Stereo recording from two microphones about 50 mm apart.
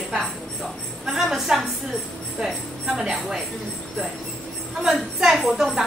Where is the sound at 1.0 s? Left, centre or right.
Centre.